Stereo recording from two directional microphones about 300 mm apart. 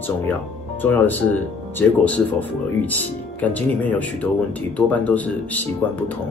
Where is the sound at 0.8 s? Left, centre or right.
Centre.